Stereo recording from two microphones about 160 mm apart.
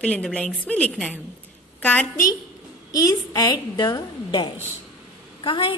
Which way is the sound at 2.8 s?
20° left (ahead or behind).